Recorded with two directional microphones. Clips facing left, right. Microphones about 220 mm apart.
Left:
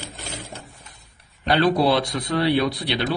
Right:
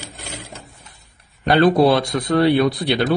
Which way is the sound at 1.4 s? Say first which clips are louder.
Right 5 dB; 50° right (ahead or behind).